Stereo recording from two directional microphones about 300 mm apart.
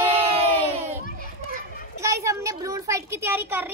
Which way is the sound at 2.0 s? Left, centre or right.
Centre.